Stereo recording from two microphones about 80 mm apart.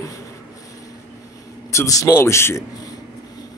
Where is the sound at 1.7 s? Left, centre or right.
Left.